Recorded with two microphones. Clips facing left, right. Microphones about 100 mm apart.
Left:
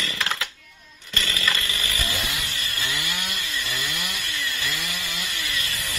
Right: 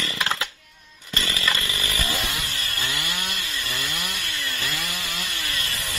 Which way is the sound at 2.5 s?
45° right (ahead or behind).